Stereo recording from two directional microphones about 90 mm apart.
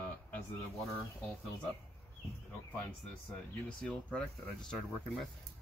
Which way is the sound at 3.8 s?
10° left (ahead or behind).